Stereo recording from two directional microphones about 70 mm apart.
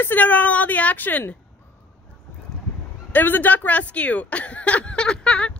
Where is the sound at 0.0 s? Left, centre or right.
Left.